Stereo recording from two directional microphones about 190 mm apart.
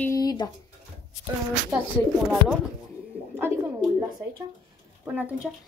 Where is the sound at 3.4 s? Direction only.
10° right (ahead or behind).